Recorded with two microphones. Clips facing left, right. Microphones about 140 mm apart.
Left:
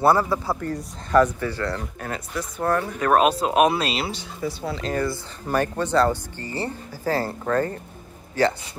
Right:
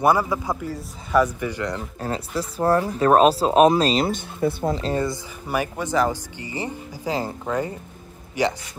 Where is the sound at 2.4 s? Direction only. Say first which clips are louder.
Right 3 dB; 30° right (ahead or behind); by 4.7 s 55° right (ahead or behind).